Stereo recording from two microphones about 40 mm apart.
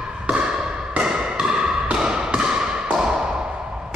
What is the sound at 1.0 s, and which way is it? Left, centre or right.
Music, right.